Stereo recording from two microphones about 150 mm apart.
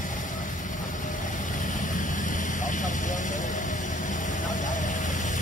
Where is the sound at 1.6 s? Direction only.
60° left (ahead or behind).